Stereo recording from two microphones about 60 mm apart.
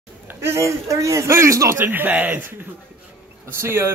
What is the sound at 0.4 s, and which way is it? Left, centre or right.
A man's voice, right.